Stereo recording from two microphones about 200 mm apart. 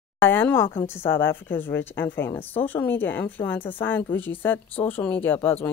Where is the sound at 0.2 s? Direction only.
10° left (ahead or behind).